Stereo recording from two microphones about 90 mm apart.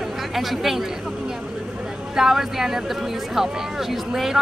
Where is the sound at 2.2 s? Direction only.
5° right (ahead or behind).